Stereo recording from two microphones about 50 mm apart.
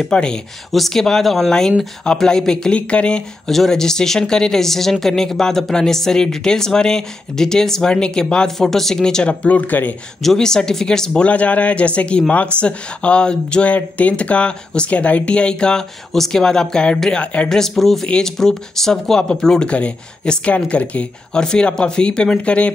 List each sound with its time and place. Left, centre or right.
0.0 s speech: centre
0.7 s speech: centre
3.4 s speech: centre; by 9.9 s left
10.2 s speech: centre
11.2 s speech: left; by 17.2 s centre
17.2 s speech: left
17.5 s speech: centre
19.7 s speech: left